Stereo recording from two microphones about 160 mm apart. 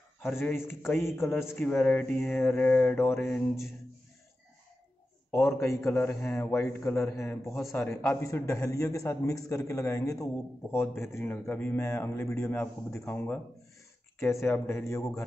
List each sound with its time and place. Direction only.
0.2 s a man's voice: 15° left (ahead or behind)
3.2 s mantra: 5° left (ahead or behind)
5.9 s a man's voice: 15° left (ahead or behind)